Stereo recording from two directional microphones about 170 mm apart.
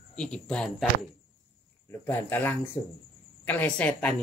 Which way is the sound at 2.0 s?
15° left (ahead or behind).